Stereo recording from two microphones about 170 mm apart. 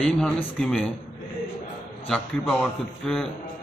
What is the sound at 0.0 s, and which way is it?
Speech, 5° left (ahead or behind).